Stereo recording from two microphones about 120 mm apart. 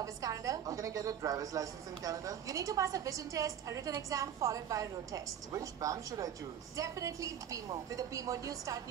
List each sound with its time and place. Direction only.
0.0 s a woman's voice: 30° right (ahead or behind)